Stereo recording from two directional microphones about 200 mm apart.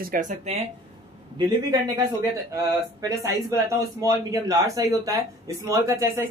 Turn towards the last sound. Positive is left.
turn(degrees=-15)  # may be behind; listen again after turning